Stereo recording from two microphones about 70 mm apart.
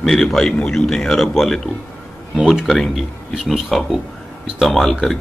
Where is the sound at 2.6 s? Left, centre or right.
Centre.